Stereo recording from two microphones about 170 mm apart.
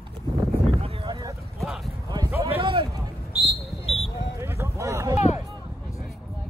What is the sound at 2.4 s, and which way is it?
Basketball bounce, 35° right (ahead or behind).